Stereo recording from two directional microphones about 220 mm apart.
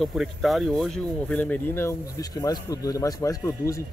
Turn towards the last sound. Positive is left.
turn(degrees=15)  # may be behind; listen again after turning